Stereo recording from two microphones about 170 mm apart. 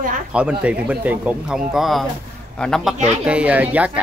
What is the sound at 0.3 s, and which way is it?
A man's voice, 5° right (ahead or behind).